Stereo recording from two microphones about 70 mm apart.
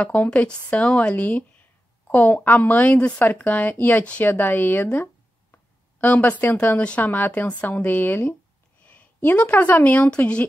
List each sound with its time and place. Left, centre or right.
0.0 s a woman's voice: left